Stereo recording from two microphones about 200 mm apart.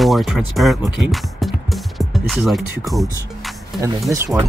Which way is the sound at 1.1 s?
Centre (ahead or behind).